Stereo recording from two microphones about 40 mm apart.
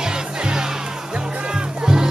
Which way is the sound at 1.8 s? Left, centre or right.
Centre.